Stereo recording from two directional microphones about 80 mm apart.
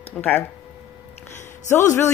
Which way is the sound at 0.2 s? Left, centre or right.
Centre.